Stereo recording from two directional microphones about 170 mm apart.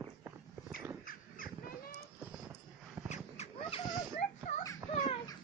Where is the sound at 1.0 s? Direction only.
55° left (ahead or behind).